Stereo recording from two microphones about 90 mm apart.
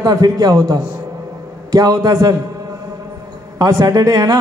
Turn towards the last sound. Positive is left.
turn(degrees=-45)  # may be behind; listen again after turning